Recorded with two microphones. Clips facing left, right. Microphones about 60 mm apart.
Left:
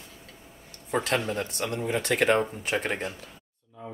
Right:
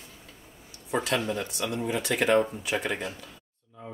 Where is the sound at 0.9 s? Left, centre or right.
Left.